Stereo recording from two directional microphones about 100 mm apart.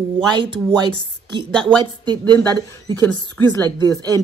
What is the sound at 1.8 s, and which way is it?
Speech, 50° right (ahead or behind).